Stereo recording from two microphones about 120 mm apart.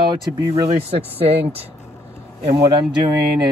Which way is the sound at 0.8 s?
55° right (ahead or behind).